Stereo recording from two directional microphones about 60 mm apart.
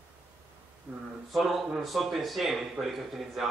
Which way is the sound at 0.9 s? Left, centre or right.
Right.